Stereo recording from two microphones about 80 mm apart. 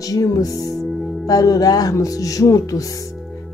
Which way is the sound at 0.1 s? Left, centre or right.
Left.